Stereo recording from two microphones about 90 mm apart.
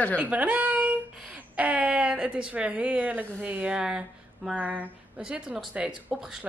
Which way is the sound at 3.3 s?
20° right (ahead or behind).